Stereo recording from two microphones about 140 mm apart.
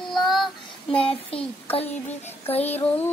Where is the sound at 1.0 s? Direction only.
40° left (ahead or behind).